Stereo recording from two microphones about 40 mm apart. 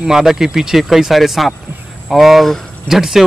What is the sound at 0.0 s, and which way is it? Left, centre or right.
Speech, centre.